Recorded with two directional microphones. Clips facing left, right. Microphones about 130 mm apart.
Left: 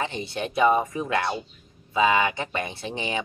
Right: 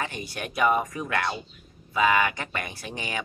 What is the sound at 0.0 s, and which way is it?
Speech, 25° left (ahead or behind).